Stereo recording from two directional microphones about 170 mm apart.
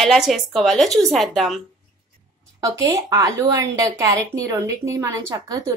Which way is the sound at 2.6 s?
20° right (ahead or behind).